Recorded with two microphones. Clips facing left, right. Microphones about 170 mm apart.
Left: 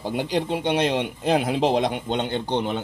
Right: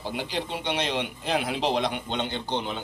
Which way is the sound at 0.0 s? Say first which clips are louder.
Left 6 dB; 45° left (ahead or behind).